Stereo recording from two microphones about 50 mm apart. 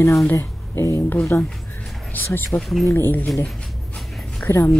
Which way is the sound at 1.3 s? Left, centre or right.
Left.